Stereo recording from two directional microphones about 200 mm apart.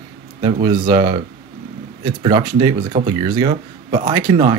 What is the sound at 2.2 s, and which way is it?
Speech, 20° right (ahead or behind).